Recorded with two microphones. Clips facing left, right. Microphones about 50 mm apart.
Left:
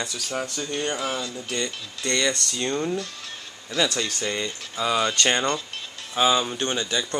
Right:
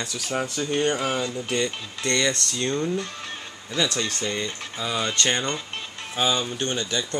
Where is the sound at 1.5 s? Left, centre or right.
Centre.